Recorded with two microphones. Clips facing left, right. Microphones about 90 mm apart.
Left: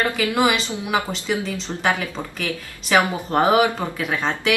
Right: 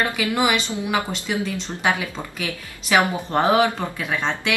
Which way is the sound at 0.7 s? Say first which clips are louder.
Even; 20° left (ahead or behind).